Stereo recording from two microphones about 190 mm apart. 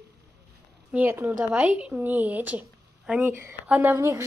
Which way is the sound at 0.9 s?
10° right (ahead or behind).